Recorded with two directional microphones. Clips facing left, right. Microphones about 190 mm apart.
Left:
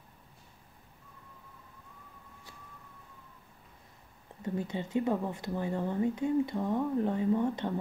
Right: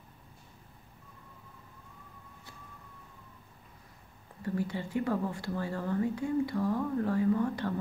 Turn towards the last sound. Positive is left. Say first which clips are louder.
# even
turn(degrees=20)  # may be behind; listen again after turning